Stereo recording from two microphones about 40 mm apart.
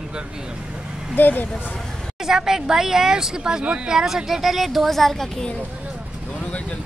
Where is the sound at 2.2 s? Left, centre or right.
Centre.